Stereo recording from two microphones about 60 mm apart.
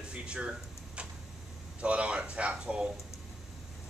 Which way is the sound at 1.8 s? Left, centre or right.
Right.